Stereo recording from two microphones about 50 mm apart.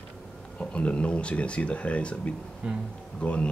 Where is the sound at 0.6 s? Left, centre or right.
Left.